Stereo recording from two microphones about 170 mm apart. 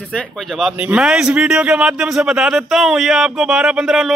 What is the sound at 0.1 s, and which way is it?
A man's voice, 5° left (ahead or behind).